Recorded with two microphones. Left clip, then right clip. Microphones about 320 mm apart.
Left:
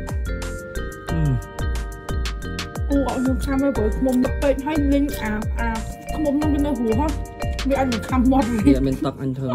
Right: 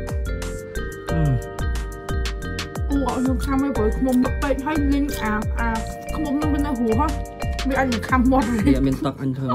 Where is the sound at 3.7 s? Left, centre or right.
Centre.